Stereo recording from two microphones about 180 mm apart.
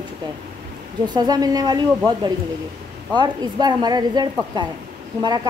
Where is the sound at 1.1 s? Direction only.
20° right (ahead or behind).